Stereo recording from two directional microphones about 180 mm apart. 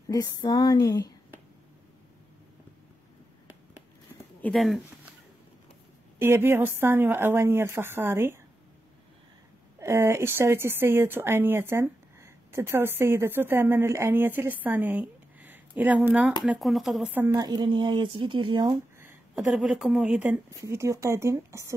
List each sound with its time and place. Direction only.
0.1 s a sound: 20° left (ahead or behind)
4.4 s speech: 5° left (ahead or behind)
6.1 s a woman's voice: 15° right (ahead or behind)
9.8 s a woman's voice: 15° right (ahead or behind)
19.3 s a woman's voice: centre (ahead or behind)